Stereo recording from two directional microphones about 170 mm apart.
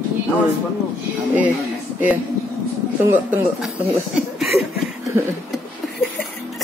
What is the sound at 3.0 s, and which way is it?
Speech, 10° right (ahead or behind).